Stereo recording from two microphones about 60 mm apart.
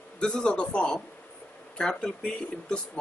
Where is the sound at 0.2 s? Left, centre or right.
Centre.